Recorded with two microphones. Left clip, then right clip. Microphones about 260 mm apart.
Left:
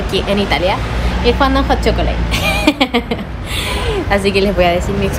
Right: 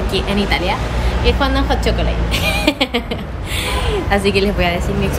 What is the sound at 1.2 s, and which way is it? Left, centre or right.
Speech, centre.